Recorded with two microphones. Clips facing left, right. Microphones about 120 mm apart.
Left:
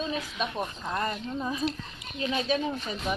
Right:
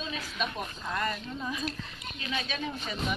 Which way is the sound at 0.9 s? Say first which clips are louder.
Even; 30° left (ahead or behind).